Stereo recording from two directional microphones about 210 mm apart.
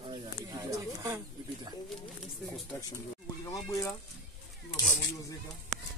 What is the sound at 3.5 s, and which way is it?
Speech, 15° left (ahead or behind).